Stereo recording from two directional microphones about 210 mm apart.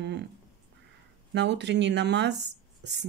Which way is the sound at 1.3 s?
55° right (ahead or behind).